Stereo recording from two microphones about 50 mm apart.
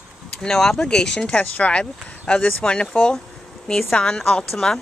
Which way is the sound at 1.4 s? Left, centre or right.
Left.